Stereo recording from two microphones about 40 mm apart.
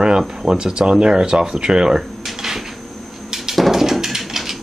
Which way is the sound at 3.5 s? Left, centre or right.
Centre.